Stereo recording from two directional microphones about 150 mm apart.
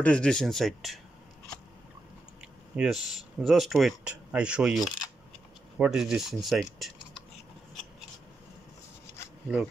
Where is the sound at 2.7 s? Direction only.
5° right (ahead or behind).